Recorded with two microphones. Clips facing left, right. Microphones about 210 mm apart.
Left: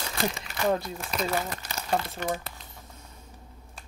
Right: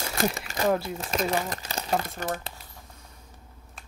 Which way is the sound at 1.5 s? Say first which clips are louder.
Right 3 dB; 35° right (ahead or behind).